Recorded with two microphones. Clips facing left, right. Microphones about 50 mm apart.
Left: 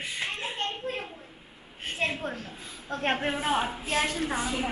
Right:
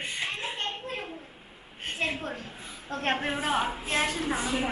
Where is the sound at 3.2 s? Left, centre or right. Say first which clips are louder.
Even; centre.